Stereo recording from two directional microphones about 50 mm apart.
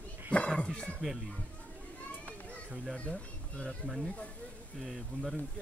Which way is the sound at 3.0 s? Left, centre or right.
Left.